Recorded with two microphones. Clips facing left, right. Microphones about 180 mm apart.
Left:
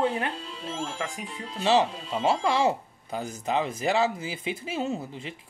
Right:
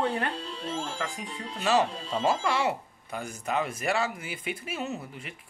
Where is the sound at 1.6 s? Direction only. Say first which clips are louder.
Left 2 dB; 25° left (ahead or behind).